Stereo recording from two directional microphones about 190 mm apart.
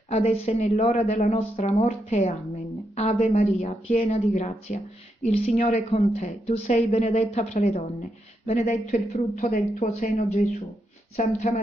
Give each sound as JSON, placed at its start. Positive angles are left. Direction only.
{"t": 0.1, "sound": "a woman's voice", "side_deg": 35}